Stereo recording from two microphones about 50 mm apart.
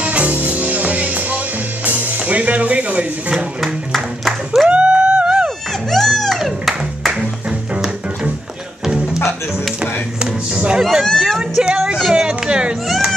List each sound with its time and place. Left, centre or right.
0.0 s music: right
3.6 s music: centre
4.6 s a sound: right
5.9 s music: centre
10.5 s music: centre
10.8 s music: centre
11.2 s a sound: centre
12.8 s baby cry: centre